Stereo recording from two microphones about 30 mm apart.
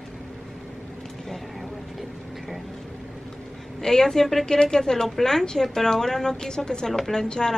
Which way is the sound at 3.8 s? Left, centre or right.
Centre.